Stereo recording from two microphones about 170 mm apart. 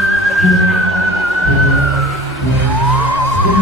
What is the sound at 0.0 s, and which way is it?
Music, centre (ahead or behind).